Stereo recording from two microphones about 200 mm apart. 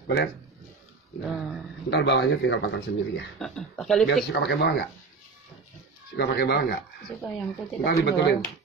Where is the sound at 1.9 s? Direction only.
60° left (ahead or behind).